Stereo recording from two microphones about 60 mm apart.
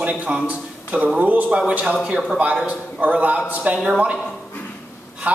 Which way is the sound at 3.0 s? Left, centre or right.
Right.